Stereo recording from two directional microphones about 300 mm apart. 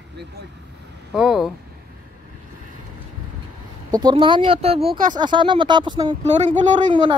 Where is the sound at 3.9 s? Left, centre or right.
Centre.